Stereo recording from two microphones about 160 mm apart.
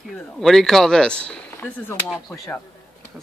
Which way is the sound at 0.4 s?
Centre (ahead or behind).